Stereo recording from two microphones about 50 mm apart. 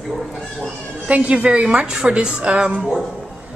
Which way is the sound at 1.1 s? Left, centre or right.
Right.